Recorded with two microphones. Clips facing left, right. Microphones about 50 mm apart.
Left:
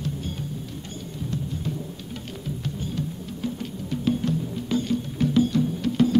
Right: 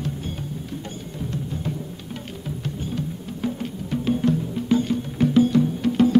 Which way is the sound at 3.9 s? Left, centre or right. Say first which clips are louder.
Right 3 dB; right.